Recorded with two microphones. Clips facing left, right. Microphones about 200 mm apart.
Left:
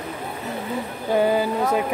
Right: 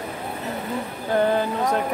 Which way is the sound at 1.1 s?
10° left (ahead or behind).